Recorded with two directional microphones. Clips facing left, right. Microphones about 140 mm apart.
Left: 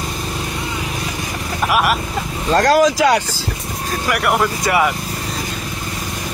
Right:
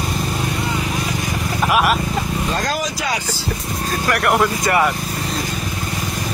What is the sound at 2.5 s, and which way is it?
Speech, 85° left.